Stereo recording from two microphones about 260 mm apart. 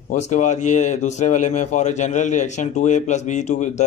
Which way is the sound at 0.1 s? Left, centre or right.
Left.